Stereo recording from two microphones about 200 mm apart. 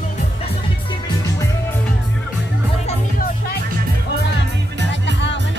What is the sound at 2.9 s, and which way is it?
Music, 45° left (ahead or behind).